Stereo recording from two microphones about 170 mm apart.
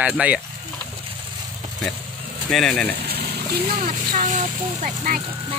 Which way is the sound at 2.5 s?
5° left (ahead or behind).